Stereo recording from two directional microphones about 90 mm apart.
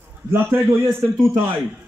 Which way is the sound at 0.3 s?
25° right (ahead or behind).